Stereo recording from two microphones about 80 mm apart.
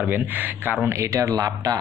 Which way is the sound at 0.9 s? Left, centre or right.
Right.